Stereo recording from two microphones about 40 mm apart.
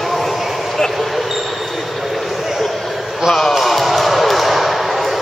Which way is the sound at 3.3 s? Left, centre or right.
Centre.